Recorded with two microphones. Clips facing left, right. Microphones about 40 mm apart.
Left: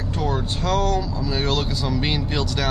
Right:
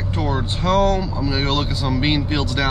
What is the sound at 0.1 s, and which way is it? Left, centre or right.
Speech, right.